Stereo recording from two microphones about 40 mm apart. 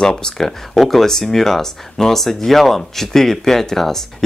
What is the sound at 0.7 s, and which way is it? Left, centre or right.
Speech, centre.